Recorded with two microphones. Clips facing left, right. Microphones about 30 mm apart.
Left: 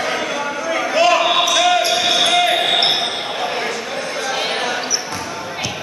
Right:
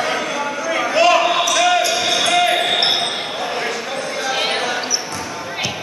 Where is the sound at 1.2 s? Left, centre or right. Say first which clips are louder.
Left 1 dB; left.